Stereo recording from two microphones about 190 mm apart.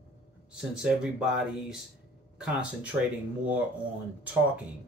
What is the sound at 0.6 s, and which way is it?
Speech, 5° right (ahead or behind).